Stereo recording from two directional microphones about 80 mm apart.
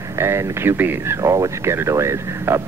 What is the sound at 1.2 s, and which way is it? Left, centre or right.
Speech, right.